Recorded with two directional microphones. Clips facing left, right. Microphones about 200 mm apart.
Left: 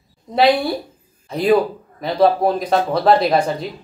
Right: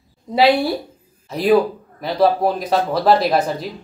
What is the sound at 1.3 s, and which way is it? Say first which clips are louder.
Speech: even; centre (ahead or behind).